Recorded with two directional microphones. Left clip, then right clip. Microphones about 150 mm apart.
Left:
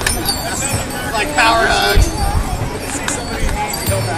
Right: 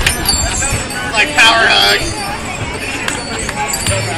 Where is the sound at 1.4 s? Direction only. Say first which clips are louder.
Right 4 dB; centre (ahead or behind).